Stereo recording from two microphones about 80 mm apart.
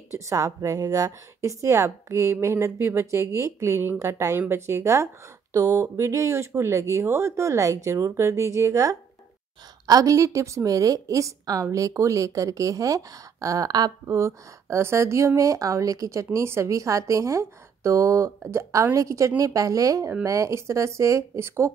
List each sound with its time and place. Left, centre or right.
0.1 s a woman's voice: right
14.0 s a woman's voice: right